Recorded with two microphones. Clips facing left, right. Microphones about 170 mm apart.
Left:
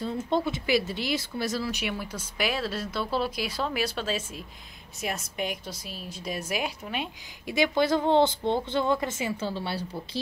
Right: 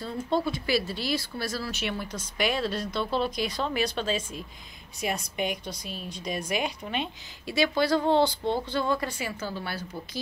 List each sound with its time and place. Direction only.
0.5 s a woman's voice: 20° left (ahead or behind)
7.4 s speech: 15° left (ahead or behind)